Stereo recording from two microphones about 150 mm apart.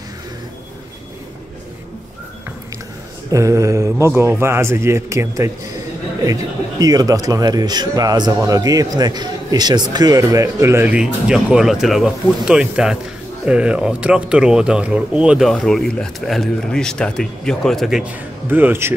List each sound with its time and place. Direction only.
3.3 s speech: 20° right (ahead or behind)